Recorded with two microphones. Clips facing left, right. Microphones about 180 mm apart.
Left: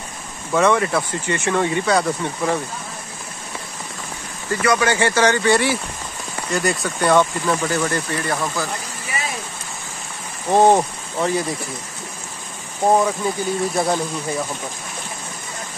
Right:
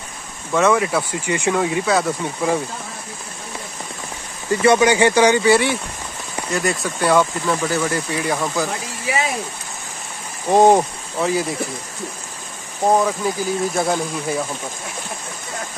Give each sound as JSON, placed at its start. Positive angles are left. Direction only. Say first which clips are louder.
{"t": 0.5, "sound": "speech", "louder": "even", "side_deg": -5}
{"t": 4.5, "sound": "speech", "louder": "right 4 dB", "side_deg": -20}
{"t": 5.5, "sound": "speech", "louder": "right 2 dB", "side_deg": 0}
{"t": 10.5, "sound": "speech", "louder": "right 1 dB", "side_deg": -10}
{"t": 12.9, "sound": "speech", "louder": "even", "side_deg": 0}